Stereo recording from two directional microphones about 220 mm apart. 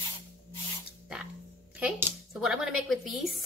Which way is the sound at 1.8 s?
5° right (ahead or behind).